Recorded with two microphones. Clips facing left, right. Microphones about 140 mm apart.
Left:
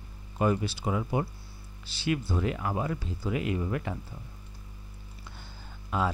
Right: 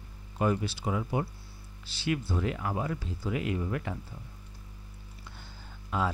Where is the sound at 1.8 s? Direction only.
10° left (ahead or behind).